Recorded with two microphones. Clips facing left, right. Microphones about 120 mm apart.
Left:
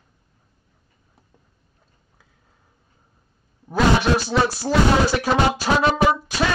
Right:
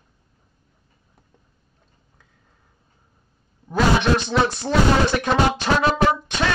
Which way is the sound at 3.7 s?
5° left (ahead or behind).